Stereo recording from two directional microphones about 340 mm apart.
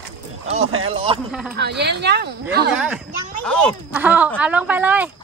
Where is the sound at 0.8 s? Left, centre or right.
Centre.